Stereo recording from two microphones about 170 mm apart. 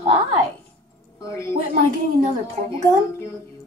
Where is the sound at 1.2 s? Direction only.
15° left (ahead or behind).